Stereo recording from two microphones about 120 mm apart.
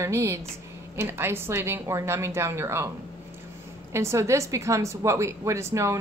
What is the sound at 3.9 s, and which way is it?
Speech, 25° right (ahead or behind).